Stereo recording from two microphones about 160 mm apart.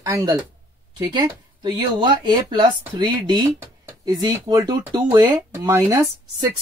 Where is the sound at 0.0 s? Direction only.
25° right (ahead or behind).